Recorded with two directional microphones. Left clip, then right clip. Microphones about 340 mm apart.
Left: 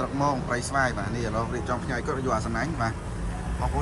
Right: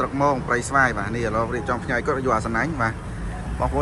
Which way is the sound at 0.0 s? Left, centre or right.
Centre.